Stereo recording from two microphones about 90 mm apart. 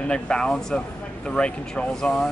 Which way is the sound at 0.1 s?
10° left (ahead or behind).